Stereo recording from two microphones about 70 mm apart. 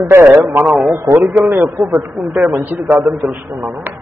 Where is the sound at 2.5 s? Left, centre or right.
Right.